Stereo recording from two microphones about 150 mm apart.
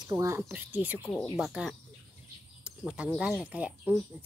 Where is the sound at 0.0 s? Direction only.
20° right (ahead or behind).